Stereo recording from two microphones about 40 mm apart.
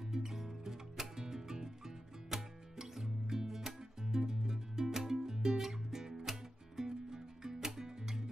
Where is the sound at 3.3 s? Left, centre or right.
Centre.